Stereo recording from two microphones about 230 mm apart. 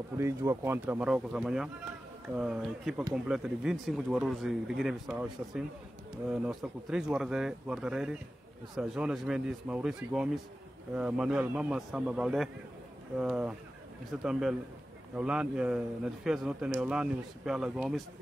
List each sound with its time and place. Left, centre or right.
0.2 s speech: centre